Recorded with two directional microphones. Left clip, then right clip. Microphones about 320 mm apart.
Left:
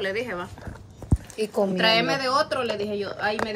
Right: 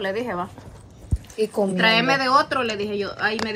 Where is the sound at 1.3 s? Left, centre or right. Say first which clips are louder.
Right 2 dB; centre.